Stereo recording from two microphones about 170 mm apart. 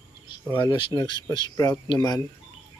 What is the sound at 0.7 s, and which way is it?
Speech, 30° left (ahead or behind).